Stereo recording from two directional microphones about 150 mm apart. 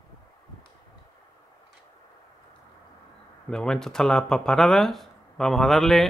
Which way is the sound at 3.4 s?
5° left (ahead or behind).